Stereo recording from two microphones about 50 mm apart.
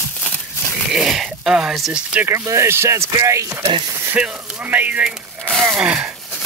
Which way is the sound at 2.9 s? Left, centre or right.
Right.